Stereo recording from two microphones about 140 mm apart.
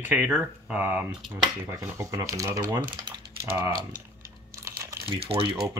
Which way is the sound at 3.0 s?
35° right (ahead or behind).